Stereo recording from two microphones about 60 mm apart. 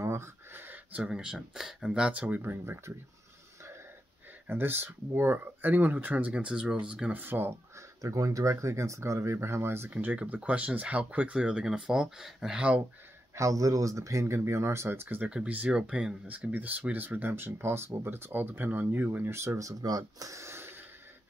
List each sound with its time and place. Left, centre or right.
0.0 s a sound: right
0.9 s speech: centre
2.2 s speech: right
2.6 s speech: right
4.5 s speech: right
6.5 s speech: centre
7.2 s speech: right
8.0 s speech: right
9.8 s speech: right
13.3 s speech: right
14.2 s speech: right
15.2 s speech: right
19.8 s speech: right